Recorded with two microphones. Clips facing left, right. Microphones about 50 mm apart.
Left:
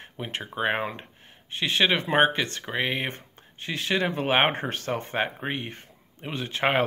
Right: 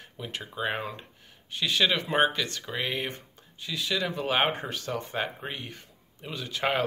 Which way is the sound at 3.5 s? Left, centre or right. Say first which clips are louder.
Left 4 dB; left.